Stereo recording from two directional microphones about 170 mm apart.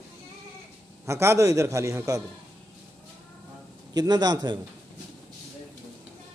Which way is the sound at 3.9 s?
25° right (ahead or behind).